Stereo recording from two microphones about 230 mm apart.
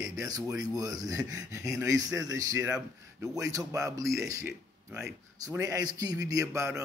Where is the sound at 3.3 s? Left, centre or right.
Centre.